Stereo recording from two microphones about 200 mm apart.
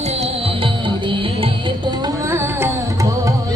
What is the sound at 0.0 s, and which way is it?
Music, 30° right (ahead or behind).